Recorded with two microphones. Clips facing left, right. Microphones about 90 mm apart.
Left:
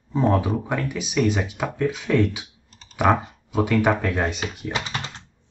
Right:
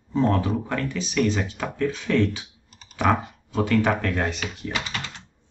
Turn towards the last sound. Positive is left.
turn(degrees=30)  # may be behind; listen again after turning